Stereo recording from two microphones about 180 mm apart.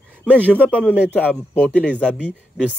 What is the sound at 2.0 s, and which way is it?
Speech, 5° right (ahead or behind).